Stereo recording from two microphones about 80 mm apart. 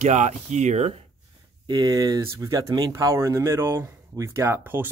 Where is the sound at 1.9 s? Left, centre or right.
Right.